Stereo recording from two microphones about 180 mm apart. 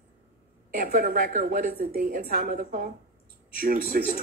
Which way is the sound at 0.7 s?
55° right (ahead or behind).